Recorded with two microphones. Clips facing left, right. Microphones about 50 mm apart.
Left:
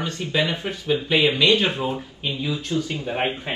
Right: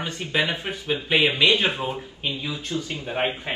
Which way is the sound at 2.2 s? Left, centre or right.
Centre.